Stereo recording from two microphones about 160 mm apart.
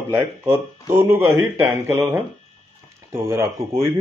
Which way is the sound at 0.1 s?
15° right (ahead or behind).